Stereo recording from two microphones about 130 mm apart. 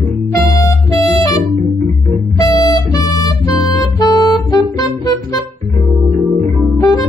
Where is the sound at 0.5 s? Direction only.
25° left (ahead or behind).